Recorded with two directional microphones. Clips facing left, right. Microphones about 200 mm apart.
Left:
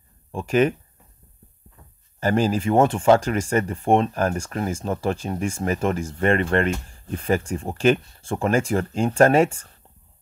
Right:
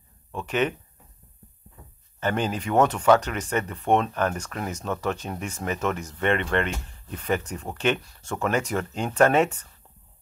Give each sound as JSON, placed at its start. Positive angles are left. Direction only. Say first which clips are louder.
{"t": 0.3, "sound": "speech", "louder": "left 6 dB", "side_deg": 35}
{"t": 2.1, "sound": "speech", "louder": "left 5 dB", "side_deg": 35}